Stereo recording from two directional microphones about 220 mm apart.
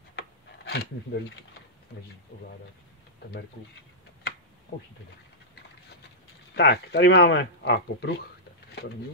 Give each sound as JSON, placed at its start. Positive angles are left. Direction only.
{"t": 0.7, "sound": "speech", "side_deg": 45}
{"t": 6.5, "sound": "speech", "side_deg": 45}